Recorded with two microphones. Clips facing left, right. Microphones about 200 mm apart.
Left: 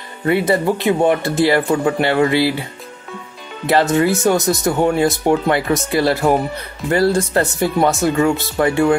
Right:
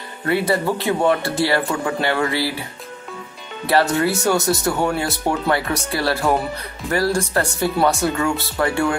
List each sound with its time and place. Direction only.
0.3 s speech: 20° left (ahead or behind)
3.6 s speech: 20° left (ahead or behind)